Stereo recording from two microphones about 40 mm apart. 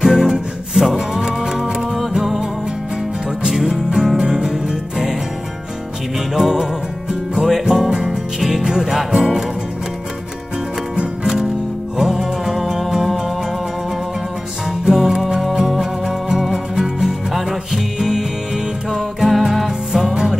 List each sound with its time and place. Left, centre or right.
0.0 s music: centre
3.4 s music: centre
6.3 s music: centre
8.4 s music: centre
8.6 s music: centre
12.0 s music: centre
14.9 s music: centre